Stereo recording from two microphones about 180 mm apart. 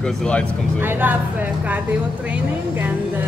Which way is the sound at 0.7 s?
10° right (ahead or behind).